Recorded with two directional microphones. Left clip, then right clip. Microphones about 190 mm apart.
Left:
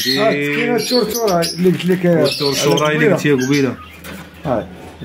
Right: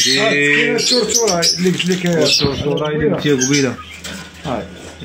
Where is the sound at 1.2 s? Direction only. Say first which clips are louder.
Even; 40° left (ahead or behind).